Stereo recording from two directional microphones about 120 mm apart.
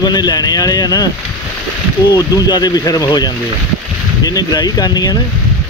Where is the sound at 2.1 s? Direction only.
30° left (ahead or behind).